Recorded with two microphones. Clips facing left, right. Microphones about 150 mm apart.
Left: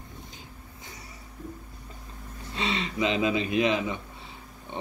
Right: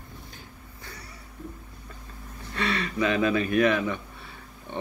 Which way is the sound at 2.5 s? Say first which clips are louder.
Right 2 dB; 20° left (ahead or behind).